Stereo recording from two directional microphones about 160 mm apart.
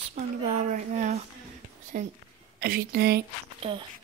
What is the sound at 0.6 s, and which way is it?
Speech, 50° right (ahead or behind).